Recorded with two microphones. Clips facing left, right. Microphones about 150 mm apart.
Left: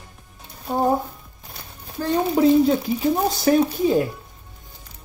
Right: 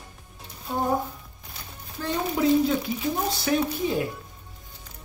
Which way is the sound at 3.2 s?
45° left (ahead or behind).